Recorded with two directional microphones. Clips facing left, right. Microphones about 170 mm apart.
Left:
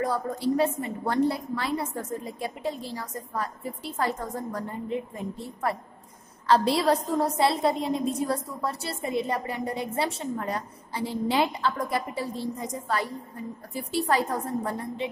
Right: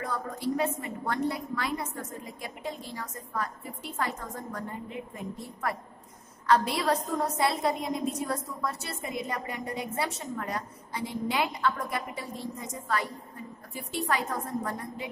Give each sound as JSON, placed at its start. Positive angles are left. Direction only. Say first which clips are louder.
{"t": 0.0, "sound": "a woman's voice", "louder": "left 6 dB", "side_deg": 30}